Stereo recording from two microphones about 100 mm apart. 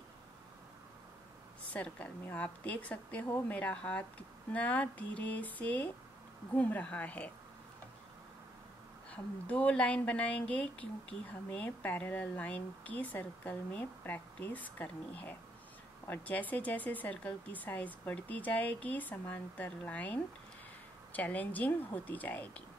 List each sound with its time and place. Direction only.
1.7 s speech: 15° left (ahead or behind)
9.1 s speech: 15° left (ahead or behind)